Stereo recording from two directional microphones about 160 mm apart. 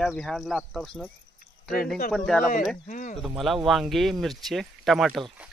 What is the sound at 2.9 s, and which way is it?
Speech, 55° left (ahead or behind).